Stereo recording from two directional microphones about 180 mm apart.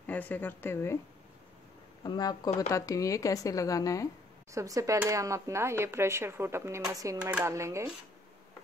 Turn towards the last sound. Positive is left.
turn(degrees=-15)  # may be behind; listen again after turning